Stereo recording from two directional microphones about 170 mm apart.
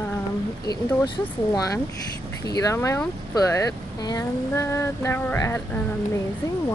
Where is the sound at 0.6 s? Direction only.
25° left (ahead or behind).